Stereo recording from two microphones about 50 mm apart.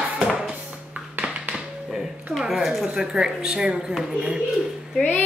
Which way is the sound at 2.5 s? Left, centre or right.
Centre.